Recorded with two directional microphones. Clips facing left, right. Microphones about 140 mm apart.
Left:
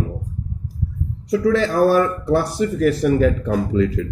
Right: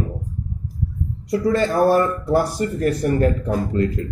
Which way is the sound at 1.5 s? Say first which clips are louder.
Left 1 dB; 80° left.